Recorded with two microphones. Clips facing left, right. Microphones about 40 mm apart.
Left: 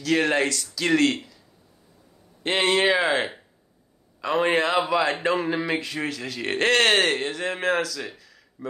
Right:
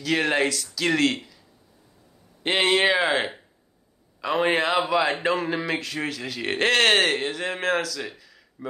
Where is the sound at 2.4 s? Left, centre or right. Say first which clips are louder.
Even; centre.